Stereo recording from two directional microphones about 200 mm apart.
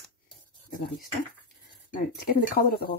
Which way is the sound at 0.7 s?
45° left (ahead or behind).